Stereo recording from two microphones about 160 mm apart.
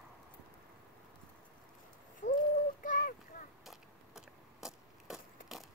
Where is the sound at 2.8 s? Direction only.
55° left (ahead or behind).